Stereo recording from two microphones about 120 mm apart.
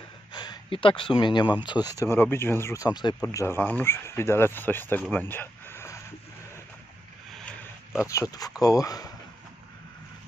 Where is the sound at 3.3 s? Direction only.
20° left (ahead or behind).